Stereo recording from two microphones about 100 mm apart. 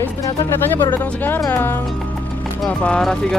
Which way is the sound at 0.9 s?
20° left (ahead or behind).